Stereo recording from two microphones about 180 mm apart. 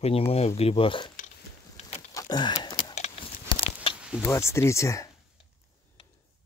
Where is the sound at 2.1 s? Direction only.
20° left (ahead or behind).